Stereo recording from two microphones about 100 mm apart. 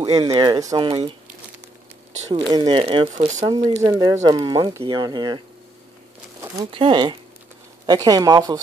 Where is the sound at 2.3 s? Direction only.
50° right (ahead or behind).